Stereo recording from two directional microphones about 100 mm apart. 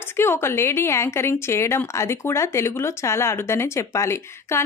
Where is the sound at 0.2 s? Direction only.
25° left (ahead or behind).